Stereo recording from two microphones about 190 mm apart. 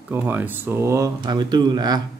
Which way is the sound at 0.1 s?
10° right (ahead or behind).